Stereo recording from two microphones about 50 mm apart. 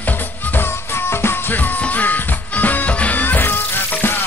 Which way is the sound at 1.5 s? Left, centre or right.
Left.